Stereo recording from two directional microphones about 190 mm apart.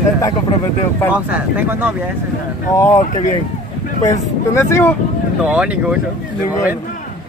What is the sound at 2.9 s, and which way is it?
Speech, 40° left (ahead or behind).